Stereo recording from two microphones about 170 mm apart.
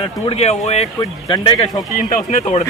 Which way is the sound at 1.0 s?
25° left (ahead or behind).